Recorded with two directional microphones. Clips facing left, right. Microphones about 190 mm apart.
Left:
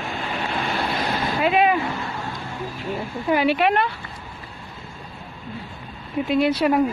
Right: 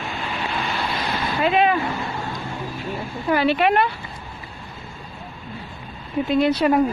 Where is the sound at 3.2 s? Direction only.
15° left (ahead or behind).